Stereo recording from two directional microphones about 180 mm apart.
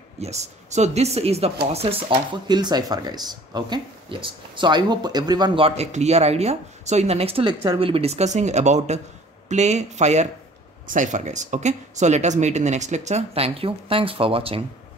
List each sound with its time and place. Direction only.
0.2 s a woman's voice: 40° right (ahead or behind)